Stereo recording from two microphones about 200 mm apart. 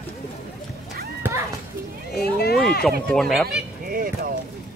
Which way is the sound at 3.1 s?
Centre (ahead or behind).